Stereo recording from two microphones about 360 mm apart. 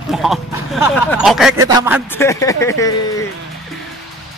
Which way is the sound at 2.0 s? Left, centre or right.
Centre.